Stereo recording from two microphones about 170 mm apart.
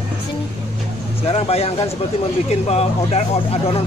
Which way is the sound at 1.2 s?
40° left (ahead or behind).